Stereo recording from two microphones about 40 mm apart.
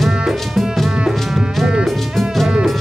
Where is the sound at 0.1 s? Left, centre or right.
Centre.